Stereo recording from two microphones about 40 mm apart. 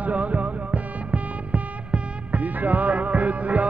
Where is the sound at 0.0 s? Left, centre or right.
Right.